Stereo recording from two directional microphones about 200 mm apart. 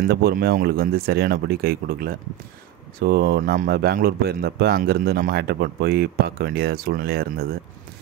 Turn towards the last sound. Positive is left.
turn(degrees=-50)  # may be behind; listen again after turning